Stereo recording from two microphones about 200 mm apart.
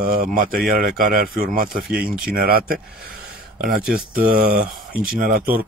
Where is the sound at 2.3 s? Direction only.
50° right (ahead or behind).